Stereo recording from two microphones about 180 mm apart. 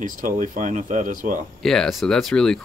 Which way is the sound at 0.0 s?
45° right (ahead or behind).